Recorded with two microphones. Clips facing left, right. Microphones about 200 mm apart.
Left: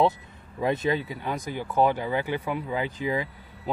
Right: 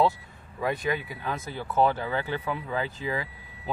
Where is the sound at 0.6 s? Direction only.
25° left (ahead or behind).